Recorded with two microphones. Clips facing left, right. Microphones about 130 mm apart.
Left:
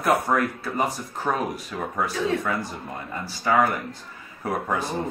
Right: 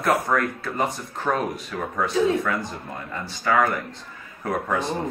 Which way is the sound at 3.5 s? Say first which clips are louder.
Even; 20° left (ahead or behind).